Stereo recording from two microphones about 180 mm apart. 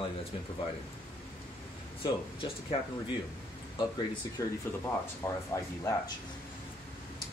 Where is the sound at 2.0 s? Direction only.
30° left (ahead or behind).